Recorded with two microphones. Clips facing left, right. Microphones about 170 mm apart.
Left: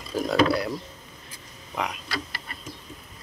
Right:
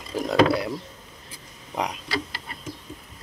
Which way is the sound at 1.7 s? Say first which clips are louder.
Right 2 dB; 30° right (ahead or behind).